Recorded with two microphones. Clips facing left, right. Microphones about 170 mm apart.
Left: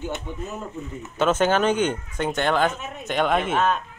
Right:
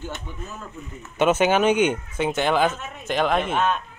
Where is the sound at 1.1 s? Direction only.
10° right (ahead or behind).